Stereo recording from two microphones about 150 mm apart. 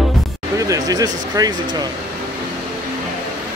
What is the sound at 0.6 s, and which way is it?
Speech, 25° right (ahead or behind).